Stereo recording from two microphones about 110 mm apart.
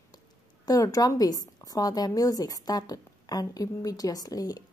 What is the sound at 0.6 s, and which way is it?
A woman's voice, 30° left (ahead or behind).